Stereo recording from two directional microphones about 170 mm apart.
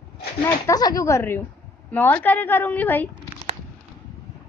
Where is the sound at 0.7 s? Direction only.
20° left (ahead or behind).